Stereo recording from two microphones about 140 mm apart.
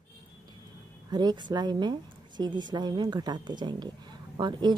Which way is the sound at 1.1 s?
30° right (ahead or behind).